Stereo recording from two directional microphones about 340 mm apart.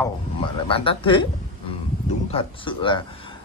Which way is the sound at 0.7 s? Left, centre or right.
Centre.